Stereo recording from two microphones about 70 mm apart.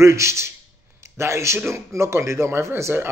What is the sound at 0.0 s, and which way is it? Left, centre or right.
Speech, right.